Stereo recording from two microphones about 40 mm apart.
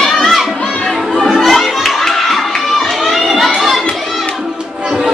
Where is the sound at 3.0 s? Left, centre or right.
Centre.